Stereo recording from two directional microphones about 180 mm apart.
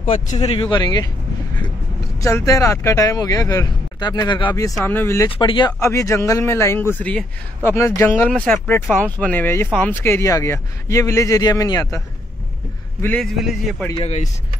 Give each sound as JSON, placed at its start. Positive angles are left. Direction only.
{"t": 0.0, "sound": "speech", "side_deg": 40}
{"t": 2.1, "sound": "speech", "side_deg": 15}
{"t": 5.3, "sound": "speech", "side_deg": 25}
{"t": 13.0, "sound": "a man's voice", "side_deg": 5}
{"t": 14.0, "sound": "speech", "side_deg": 40}